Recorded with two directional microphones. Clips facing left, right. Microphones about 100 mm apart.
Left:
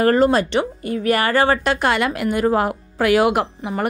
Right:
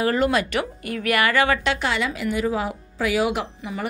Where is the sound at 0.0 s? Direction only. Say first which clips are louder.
Left 5 dB; 45° left (ahead or behind).